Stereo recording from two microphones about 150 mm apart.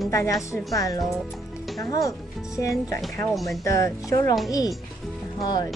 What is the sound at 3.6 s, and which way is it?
Speech, 20° left (ahead or behind).